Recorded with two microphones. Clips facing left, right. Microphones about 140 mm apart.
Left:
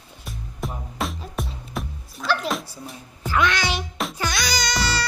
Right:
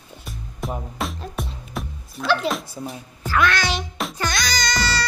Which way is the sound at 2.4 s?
Centre (ahead or behind).